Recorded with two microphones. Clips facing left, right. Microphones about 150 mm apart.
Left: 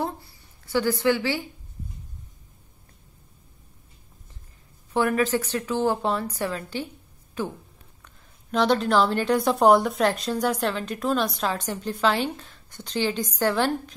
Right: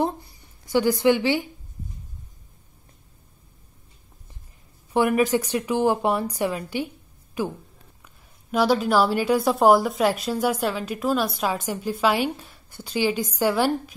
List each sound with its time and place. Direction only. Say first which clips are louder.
0.0 s a woman's voice: right 5 dB; 20° right (ahead or behind)
4.9 s a woman's voice: right 3 dB; 15° right (ahead or behind)